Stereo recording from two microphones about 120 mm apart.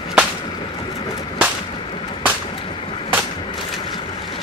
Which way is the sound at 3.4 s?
45° left (ahead or behind).